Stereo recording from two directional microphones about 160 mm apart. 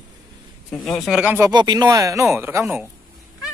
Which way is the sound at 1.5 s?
25° right (ahead or behind).